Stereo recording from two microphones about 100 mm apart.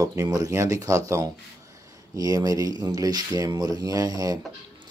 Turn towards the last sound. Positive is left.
turn(degrees=-35)  # may be behind; listen again after turning